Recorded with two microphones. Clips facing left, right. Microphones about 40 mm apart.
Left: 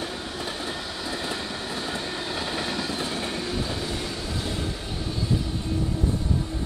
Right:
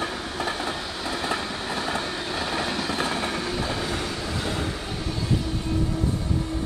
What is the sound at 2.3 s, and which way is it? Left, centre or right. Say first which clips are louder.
Train: right 2 dB; right.